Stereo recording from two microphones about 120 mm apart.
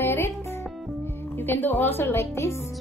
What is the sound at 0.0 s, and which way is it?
Music, 20° left (ahead or behind).